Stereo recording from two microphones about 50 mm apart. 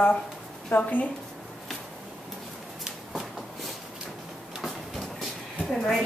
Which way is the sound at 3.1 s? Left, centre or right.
Centre.